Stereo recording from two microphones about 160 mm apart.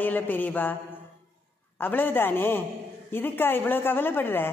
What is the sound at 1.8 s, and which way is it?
A woman's voice, 10° left (ahead or behind).